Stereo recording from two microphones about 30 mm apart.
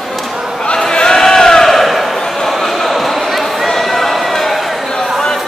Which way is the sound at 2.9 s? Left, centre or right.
Centre.